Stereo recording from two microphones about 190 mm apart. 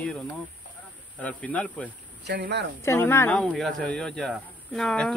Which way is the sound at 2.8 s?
15° left (ahead or behind).